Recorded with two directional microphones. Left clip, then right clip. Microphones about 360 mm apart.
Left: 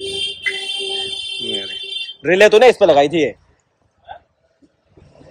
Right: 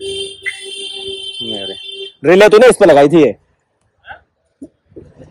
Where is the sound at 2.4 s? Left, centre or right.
Right.